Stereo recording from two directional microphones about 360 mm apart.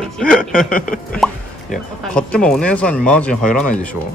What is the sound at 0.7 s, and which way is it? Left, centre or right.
Speech, left.